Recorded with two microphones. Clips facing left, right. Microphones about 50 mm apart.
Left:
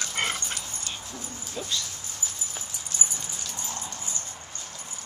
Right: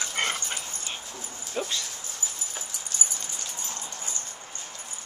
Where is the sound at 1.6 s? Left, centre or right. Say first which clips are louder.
Right 5 dB; right.